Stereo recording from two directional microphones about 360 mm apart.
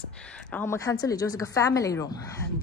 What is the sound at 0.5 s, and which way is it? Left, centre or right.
Speech, centre.